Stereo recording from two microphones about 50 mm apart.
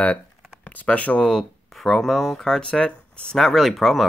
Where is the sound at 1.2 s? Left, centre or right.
Centre.